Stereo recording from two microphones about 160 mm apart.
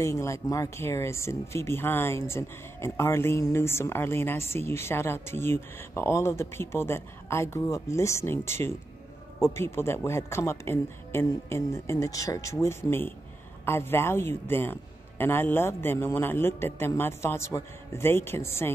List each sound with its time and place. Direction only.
0.0 s speech: 20° left (ahead or behind)